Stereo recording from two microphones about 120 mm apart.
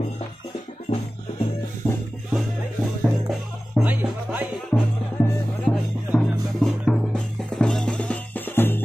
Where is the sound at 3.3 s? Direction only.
5° right (ahead or behind).